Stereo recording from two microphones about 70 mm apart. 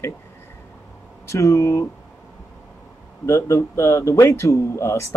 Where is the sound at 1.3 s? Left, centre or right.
Left.